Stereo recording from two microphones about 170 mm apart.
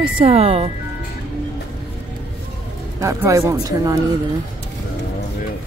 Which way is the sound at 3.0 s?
20° right (ahead or behind).